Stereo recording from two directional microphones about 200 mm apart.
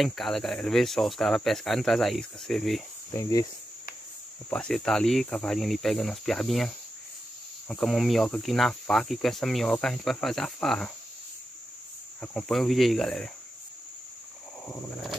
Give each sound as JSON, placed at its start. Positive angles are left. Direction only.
{"t": 0.0, "sound": "cricket", "side_deg": 0}
{"t": 3.1, "sound": "cricket", "side_deg": 15}
{"t": 4.5, "sound": "cricket", "side_deg": 5}
{"t": 12.2, "sound": "cricket", "side_deg": 0}
{"t": 14.7, "sound": "cricket", "side_deg": 0}